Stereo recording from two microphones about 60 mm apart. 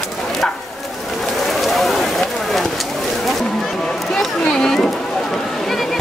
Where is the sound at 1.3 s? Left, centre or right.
Centre.